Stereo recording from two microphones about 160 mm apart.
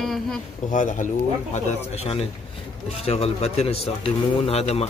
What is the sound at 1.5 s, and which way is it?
Speech, 40° left (ahead or behind).